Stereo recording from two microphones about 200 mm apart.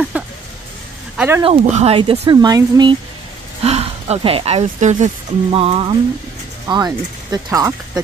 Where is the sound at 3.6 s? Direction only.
30° right (ahead or behind).